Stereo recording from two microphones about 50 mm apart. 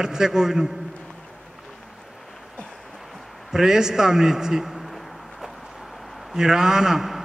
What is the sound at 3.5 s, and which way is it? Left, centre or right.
A man's voice, centre.